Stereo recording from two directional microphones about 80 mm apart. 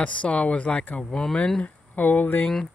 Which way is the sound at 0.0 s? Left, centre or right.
Centre.